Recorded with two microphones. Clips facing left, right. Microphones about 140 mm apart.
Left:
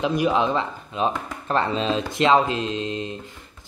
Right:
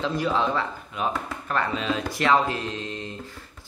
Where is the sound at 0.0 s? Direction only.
15° left (ahead or behind).